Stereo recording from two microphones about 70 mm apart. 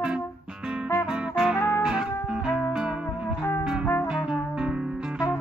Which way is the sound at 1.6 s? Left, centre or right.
Left.